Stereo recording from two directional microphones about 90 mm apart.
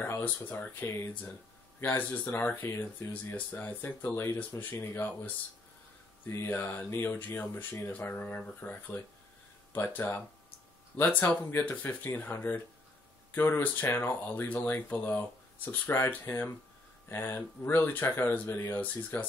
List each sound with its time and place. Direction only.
0.0 s speech: 20° left (ahead or behind)